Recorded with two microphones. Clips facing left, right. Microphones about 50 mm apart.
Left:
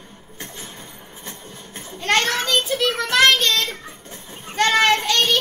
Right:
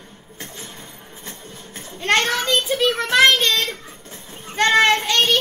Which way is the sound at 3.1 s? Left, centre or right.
Centre.